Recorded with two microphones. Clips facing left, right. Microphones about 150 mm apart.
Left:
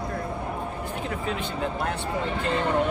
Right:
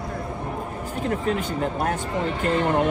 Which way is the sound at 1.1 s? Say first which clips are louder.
Right 9 dB; 45° right (ahead or behind).